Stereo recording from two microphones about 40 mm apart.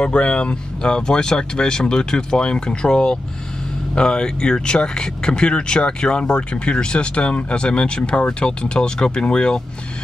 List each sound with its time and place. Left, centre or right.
0.0 s speech: left